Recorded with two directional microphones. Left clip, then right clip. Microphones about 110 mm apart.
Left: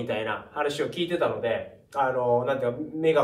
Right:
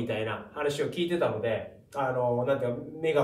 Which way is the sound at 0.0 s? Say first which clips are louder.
Left 3 dB; 45° left (ahead or behind).